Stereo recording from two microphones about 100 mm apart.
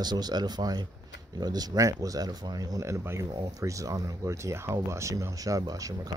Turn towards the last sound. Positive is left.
turn(degrees=-40)  # may be behind; listen again after turning